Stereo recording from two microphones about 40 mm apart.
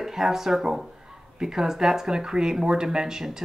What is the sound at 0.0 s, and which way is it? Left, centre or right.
Speech, centre.